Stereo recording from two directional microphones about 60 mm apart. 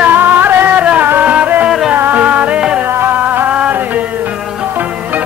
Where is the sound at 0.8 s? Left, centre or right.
Right.